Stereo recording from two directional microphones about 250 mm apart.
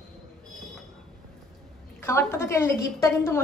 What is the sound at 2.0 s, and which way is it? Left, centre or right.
A woman's voice, centre.